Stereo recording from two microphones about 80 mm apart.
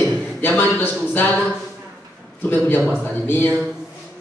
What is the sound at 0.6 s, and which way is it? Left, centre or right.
Speech, left.